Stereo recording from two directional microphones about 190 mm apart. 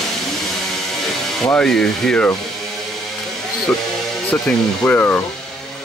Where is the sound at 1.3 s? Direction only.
5° left (ahead or behind).